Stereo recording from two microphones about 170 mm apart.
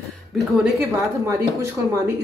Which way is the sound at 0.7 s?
15° right (ahead or behind).